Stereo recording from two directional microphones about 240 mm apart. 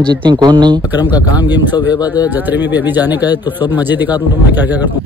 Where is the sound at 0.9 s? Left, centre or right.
Centre.